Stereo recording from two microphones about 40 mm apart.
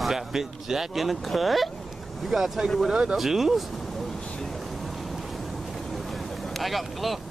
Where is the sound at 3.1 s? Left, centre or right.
Centre.